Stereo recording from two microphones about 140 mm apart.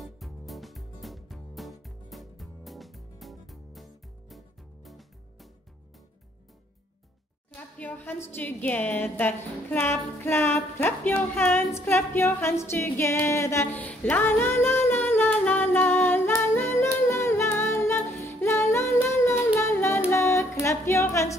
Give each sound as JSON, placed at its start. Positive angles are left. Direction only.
{"t": 0.0, "sound": "music", "side_deg": 0}
{"t": 7.5, "sound": "a woman's voice", "side_deg": 10}
{"t": 8.3, "sound": "a sound", "side_deg": 15}
{"t": 20.1, "sound": "music", "side_deg": 20}